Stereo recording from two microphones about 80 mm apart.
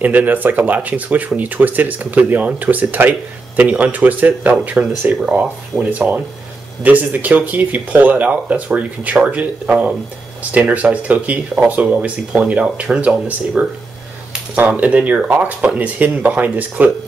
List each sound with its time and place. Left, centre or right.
0.0 s speech: right